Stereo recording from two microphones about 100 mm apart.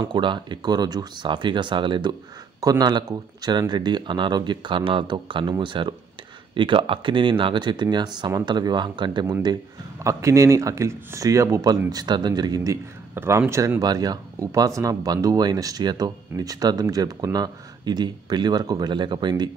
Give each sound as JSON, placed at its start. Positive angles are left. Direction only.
{"t": 0.0, "sound": "speech", "side_deg": -50}
{"t": 2.6, "sound": "speech", "side_deg": -40}
{"t": 10.0, "sound": "speech", "side_deg": -30}
{"t": 13.1, "sound": "a man's voice", "side_deg": -20}